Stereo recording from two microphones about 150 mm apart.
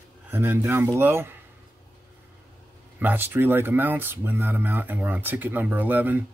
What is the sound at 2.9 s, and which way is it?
Speech, 10° right (ahead or behind).